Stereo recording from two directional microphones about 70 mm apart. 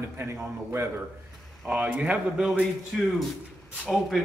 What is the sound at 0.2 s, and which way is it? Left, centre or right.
Speech, right.